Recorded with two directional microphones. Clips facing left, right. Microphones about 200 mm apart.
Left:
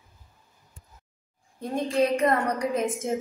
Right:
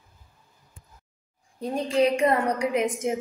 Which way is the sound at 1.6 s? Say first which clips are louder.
Right 1 dB; 15° right (ahead or behind).